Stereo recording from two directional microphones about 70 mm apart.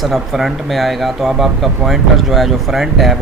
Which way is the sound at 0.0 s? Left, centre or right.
Centre.